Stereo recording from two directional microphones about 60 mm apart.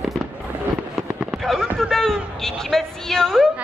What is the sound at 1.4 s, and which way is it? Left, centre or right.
Fireworks, centre.